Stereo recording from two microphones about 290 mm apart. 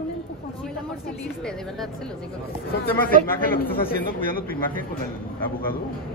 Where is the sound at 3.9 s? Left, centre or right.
Left.